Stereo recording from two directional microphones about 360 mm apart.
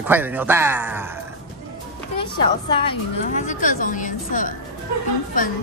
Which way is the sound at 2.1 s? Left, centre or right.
Centre.